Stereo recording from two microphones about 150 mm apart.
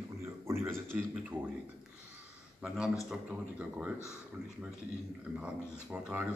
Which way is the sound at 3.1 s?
10° right (ahead or behind).